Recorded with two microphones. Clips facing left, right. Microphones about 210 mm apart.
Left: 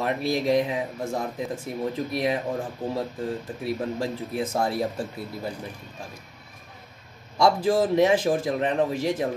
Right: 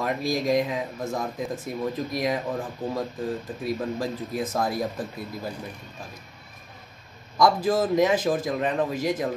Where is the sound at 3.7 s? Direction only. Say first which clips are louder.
Even; 25° left (ahead or behind).